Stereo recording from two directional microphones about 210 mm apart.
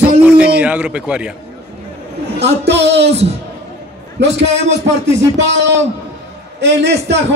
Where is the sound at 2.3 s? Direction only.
55° right (ahead or behind).